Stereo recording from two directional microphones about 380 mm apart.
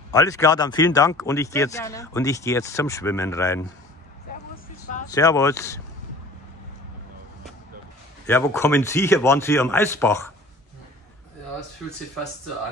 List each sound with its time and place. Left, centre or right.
0.1 s speech: centre
5.0 s speech: centre
8.3 s speech: centre